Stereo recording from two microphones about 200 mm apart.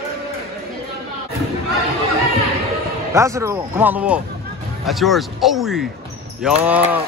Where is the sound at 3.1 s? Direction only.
15° right (ahead or behind).